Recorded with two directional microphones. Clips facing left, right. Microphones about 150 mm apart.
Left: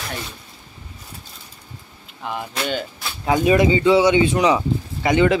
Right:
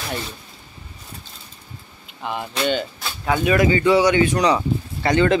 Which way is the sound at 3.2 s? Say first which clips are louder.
Left 2 dB; 20° left (ahead or behind).